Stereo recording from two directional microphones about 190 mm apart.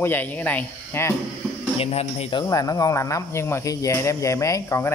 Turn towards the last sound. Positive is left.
turn(degrees=15)  # may be behind; listen again after turning